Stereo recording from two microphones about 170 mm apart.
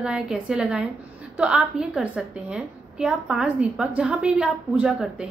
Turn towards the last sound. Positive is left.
turn(degrees=-5)  # may be behind; listen again after turning